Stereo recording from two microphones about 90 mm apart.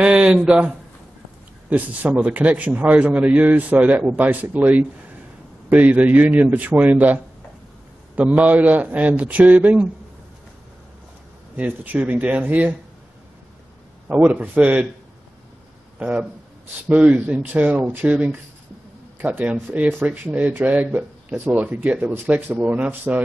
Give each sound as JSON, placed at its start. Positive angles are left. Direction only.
{"t": 0.0, "sound": "a man's voice", "side_deg": -10}
{"t": 8.2, "sound": "a man's voice", "side_deg": -15}
{"t": 11.5, "sound": "speech", "side_deg": -20}
{"t": 14.0, "sound": "a man's voice", "side_deg": -15}
{"t": 16.9, "sound": "a man's voice", "side_deg": -15}